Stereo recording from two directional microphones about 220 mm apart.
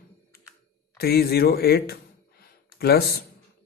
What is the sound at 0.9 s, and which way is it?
Speech, 45° left (ahead or behind).